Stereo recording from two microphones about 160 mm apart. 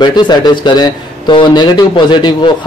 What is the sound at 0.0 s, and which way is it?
Speech, 30° left (ahead or behind).